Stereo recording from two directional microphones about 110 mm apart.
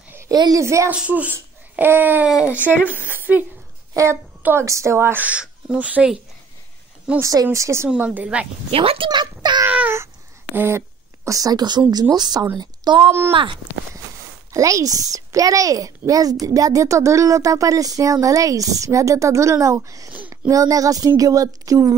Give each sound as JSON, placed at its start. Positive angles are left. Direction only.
{"t": 0.3, "sound": "a child's voice", "side_deg": -35}
{"t": 0.8, "sound": "a child's voice", "side_deg": -10}
{"t": 3.9, "sound": "a woman's voice", "side_deg": -25}
{"t": 7.2, "sound": "speech", "side_deg": -30}
{"t": 7.9, "sound": "speech", "side_deg": -15}
{"t": 8.7, "sound": "a child's voice", "side_deg": -55}
{"t": 9.7, "sound": "a sound", "side_deg": -15}
{"t": 10.5, "sound": "speech", "side_deg": -20}
{"t": 11.2, "sound": "a child's voice", "side_deg": -30}
{"t": 13.3, "sound": "speech", "side_deg": -50}
{"t": 14.5, "sound": "a child's voice", "side_deg": -30}